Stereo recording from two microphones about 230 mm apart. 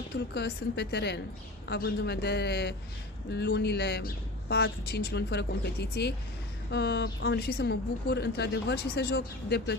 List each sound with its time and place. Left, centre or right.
0.3 s speech: left